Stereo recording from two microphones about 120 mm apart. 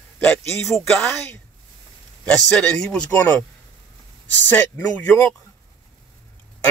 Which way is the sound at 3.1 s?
15° left (ahead or behind).